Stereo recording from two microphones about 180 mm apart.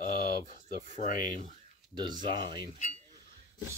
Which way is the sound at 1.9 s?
25° right (ahead or behind).